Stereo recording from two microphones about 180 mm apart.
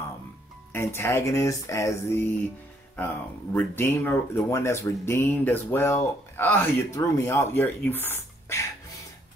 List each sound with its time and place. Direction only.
0.7 s speech: 15° left (ahead or behind)
3.5 s speech: 10° left (ahead or behind)